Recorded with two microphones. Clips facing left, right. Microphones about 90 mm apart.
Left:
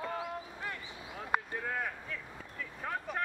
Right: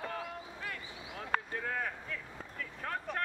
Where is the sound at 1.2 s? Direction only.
10° left (ahead or behind).